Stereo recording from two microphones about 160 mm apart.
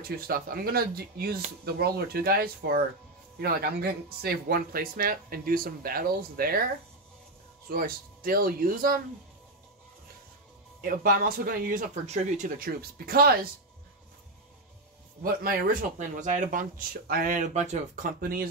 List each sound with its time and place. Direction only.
0.3 s speech: 70° right (ahead or behind)
7.7 s speech: 65° right (ahead or behind)
10.8 s speech: 60° right (ahead or behind)
11.9 s speech: 45° right (ahead or behind); by 13.5 s 70° right (ahead or behind)
15.2 s speech: 60° right (ahead or behind)